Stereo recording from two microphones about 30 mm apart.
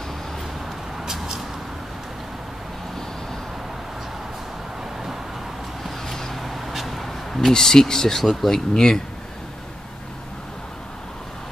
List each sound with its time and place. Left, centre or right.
1.0 s vehicle: centre
5.9 s vehicle: centre
6.4 s a sound: centre
7.5 s speech: centre
8.2 s speech: centre
8.7 s speech: left